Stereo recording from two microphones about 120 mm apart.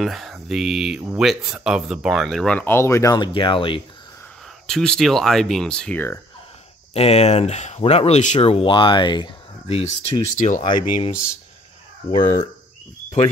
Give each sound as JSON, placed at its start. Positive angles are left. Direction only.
{"t": 0.0, "sound": "speech", "side_deg": 0}
{"t": 3.2, "sound": "speech", "side_deg": 45}
{"t": 4.6, "sound": "speech", "side_deg": 5}
{"t": 6.9, "sound": "speech", "side_deg": 60}
{"t": 9.7, "sound": "speech", "side_deg": 55}
{"t": 10.3, "sound": "speech", "side_deg": 90}
{"t": 10.6, "sound": "speech", "side_deg": 45}
{"t": 12.1, "sound": "speech", "side_deg": 35}